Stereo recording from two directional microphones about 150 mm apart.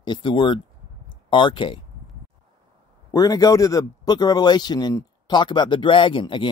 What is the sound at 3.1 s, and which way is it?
A man's voice, 25° left (ahead or behind).